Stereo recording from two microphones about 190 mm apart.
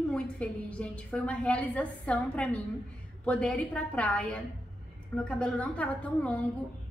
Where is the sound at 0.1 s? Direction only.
5° left (ahead or behind).